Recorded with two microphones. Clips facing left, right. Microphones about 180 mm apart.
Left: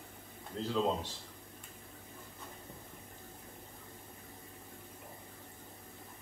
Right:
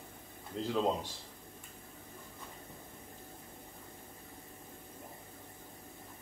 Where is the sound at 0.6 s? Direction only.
15° right (ahead or behind).